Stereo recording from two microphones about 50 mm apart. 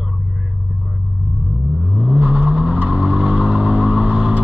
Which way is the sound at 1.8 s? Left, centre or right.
Centre.